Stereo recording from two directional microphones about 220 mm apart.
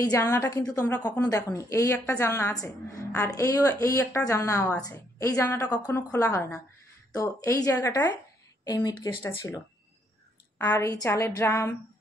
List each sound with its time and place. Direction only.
0.1 s a woman's voice: 15° left (ahead or behind)
10.6 s a woman's voice: 15° left (ahead or behind)